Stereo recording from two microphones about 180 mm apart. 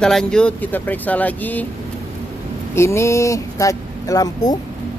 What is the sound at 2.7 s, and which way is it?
Speech, 15° left (ahead or behind).